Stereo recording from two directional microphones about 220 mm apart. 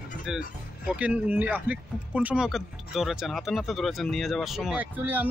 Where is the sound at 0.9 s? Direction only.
5° right (ahead or behind).